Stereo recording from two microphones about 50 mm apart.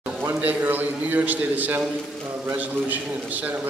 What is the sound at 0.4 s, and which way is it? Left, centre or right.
A man's voice, right.